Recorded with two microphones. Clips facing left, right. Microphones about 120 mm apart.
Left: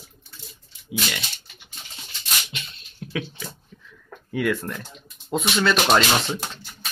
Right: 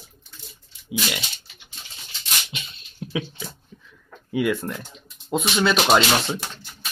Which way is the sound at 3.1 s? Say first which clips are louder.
Right 1 dB; 15° right (ahead or behind).